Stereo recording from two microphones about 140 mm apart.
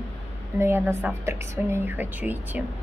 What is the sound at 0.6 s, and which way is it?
A woman's voice, 20° right (ahead or behind).